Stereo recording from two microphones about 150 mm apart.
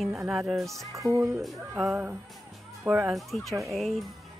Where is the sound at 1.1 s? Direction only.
20° right (ahead or behind).